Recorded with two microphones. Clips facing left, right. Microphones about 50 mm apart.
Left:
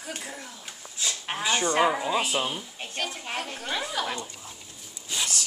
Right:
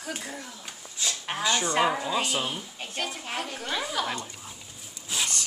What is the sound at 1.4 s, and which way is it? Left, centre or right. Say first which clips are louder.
Speech: left 1 dB; centre.